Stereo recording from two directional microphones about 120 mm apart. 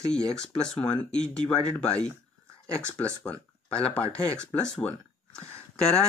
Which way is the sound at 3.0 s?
10° left (ahead or behind).